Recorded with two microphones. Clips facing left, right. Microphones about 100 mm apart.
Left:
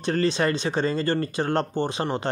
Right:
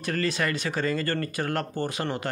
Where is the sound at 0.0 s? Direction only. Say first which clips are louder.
Left 5 dB; 30° left (ahead or behind).